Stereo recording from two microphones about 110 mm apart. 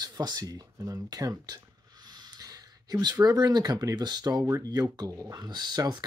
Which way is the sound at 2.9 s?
35° right (ahead or behind).